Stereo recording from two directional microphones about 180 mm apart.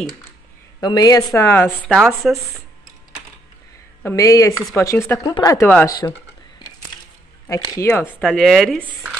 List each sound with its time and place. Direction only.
0.7 s speech: 20° left (ahead or behind); by 2.6 s centre (ahead or behind)
4.0 s speech: 15° left (ahead or behind)
7.4 s a woman's voice: 15° left (ahead or behind)